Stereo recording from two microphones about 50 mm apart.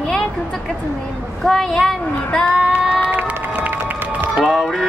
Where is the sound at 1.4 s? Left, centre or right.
Centre.